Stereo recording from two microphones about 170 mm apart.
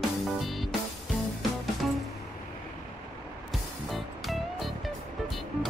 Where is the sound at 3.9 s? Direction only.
Centre (ahead or behind).